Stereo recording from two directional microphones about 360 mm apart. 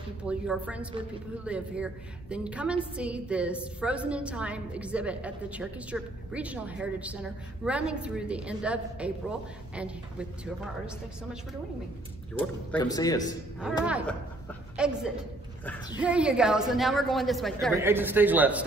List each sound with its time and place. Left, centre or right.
0.2 s a woman's voice: centre
12.4 s a woman's voice: centre
16.0 s a woman's voice: centre